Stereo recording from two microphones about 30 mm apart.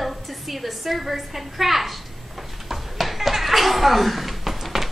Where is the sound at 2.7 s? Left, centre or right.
Centre.